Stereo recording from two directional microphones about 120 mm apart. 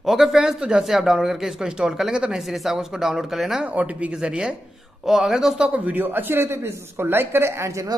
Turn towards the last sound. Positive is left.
turn(degrees=-25)  # may be behind; listen again after turning